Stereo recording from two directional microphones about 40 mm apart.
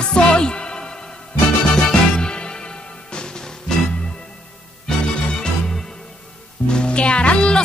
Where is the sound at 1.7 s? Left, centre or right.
Left.